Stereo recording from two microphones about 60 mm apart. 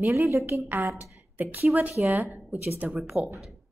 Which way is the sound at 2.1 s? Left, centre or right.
Right.